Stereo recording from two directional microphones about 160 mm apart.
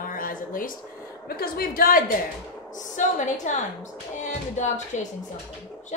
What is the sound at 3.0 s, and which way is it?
Music, 50° left (ahead or behind).